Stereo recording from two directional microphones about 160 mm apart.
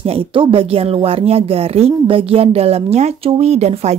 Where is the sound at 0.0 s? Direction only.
35° right (ahead or behind).